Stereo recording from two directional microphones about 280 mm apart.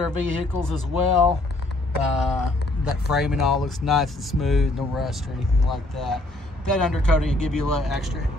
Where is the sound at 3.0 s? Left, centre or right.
Centre.